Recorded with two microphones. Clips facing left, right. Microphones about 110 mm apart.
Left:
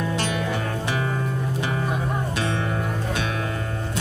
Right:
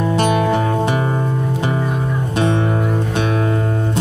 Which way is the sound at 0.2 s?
60° right (ahead or behind).